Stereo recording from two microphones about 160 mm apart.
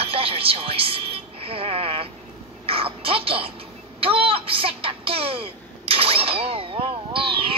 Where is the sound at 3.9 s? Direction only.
35° right (ahead or behind).